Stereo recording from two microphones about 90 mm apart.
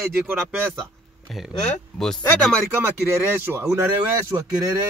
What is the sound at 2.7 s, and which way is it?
Speech, 25° right (ahead or behind).